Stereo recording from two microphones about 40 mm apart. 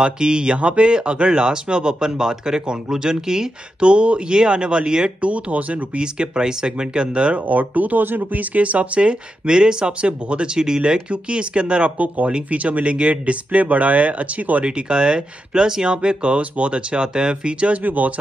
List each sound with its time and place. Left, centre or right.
0.0 s speech: right
3.8 s speech: right
5.2 s speech: right
5.9 s speech: right
7.4 s speech: right
14.6 s speech: right
17.8 s speech: right